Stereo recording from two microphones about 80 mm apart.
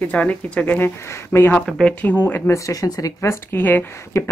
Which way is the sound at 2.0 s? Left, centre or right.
Left.